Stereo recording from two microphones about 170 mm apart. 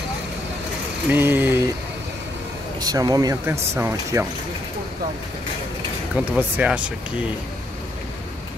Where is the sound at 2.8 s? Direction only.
20° right (ahead or behind).